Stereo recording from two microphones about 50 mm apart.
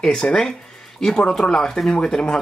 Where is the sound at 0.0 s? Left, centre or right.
Centre.